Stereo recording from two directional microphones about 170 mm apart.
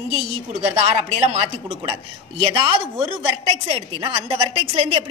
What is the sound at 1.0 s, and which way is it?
Speech, 40° right (ahead or behind).